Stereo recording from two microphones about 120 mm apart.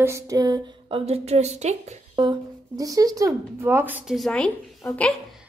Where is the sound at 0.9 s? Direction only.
60° right (ahead or behind).